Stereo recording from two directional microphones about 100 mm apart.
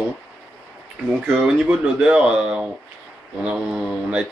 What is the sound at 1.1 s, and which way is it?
Speech, 10° right (ahead or behind).